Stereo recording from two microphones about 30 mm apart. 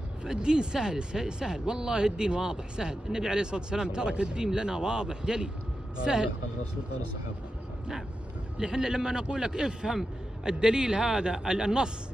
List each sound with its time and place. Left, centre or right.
0.2 s speech: right
8.5 s speech: right
11.0 s speech: centre
11.2 s speech: right